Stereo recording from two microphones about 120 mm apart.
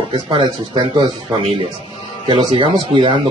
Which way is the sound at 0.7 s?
40° right (ahead or behind).